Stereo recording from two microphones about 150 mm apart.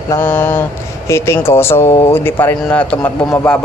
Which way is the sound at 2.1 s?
15° left (ahead or behind).